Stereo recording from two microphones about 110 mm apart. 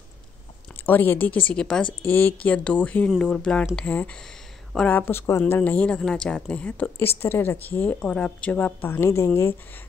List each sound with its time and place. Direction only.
0.8 s a woman's voice: 20° left (ahead or behind)